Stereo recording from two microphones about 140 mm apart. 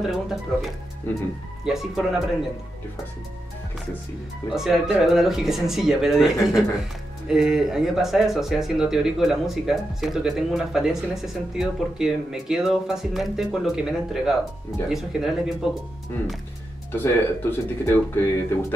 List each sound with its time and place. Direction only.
0.0 s speech: centre (ahead or behind)
4.5 s speech: centre (ahead or behind)
16.9 s speech: 15° left (ahead or behind)